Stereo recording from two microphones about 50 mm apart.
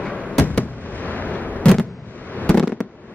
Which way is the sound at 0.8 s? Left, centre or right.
Left.